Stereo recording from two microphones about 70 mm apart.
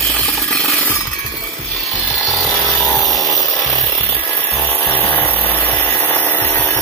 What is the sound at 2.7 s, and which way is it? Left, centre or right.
Chainsaw, left.